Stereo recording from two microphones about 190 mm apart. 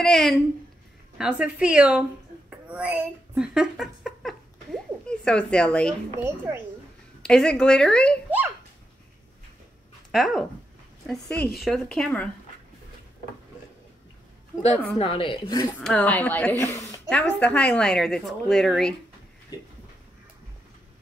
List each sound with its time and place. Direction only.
0.0 s a woman's voice: centre (ahead or behind)
2.7 s a sound: 5° right (ahead or behind)
6.2 s speech: 10° right (ahead or behind)
7.2 s a woman's voice: 5° left (ahead or behind)
10.1 s a woman's voice: centre (ahead or behind)
15.0 s a woman's voice: 30° left (ahead or behind)
15.8 s a woman's voice: 5° left (ahead or behind)
19.5 s a sound: 20° left (ahead or behind)